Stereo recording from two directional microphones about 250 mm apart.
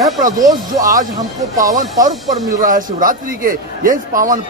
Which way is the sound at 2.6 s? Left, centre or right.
Right.